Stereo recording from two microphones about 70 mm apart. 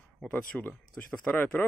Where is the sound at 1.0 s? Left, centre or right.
Left.